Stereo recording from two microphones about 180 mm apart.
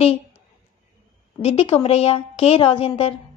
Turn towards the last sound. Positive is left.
turn(degrees=30)  # may be behind; listen again after turning